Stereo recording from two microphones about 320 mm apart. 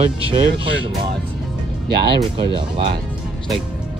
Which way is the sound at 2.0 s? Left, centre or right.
Centre.